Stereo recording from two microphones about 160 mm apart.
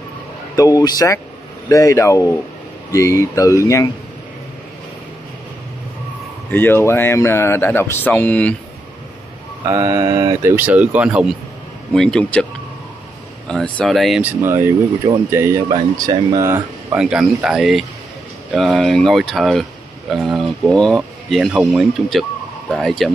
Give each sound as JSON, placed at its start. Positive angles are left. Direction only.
{"t": 0.6, "sound": "speech", "side_deg": 20}
{"t": 6.5, "sound": "speech", "side_deg": 15}
{"t": 9.6, "sound": "speech", "side_deg": -20}
{"t": 10.5, "sound": "speech", "side_deg": -10}
{"t": 11.9, "sound": "speech", "side_deg": 5}
{"t": 13.5, "sound": "speech", "side_deg": 5}
{"t": 14.2, "sound": "speech", "side_deg": -15}
{"t": 15.7, "sound": "speech", "side_deg": -25}
{"t": 16.9, "sound": "speech", "side_deg": -5}